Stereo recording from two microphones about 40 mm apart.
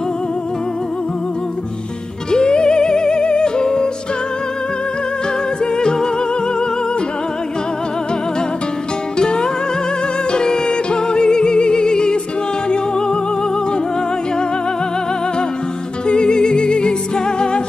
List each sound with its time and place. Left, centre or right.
2.3 s music: left
5.8 s music: centre
9.2 s music: centre
16.1 s music: left